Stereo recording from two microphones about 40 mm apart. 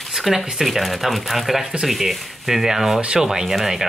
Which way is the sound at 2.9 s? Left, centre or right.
Right.